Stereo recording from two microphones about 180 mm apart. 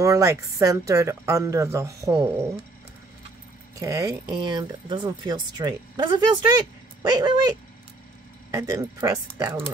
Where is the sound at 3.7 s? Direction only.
20° right (ahead or behind).